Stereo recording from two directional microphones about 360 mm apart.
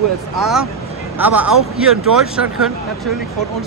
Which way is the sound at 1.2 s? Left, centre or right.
Centre.